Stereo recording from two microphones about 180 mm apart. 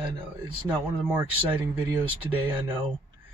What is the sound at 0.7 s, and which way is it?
Speech, 10° right (ahead or behind).